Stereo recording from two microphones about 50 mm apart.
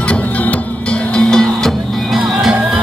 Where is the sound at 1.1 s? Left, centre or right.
Centre.